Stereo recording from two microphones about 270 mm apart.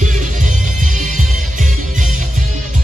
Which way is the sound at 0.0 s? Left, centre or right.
Right.